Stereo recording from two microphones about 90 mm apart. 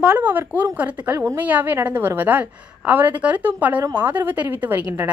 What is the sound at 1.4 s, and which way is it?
A woman's voice, 20° right (ahead or behind).